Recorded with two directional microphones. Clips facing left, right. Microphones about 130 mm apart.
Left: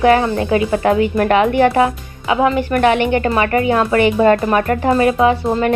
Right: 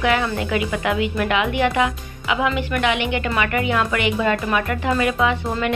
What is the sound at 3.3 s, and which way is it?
A woman's voice, 35° left (ahead or behind).